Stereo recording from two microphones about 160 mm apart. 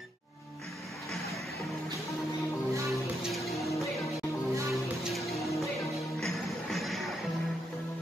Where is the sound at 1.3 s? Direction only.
Centre (ahead or behind).